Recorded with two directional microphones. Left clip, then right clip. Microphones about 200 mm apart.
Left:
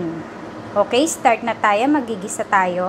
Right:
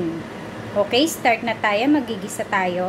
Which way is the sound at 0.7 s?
5° left (ahead or behind).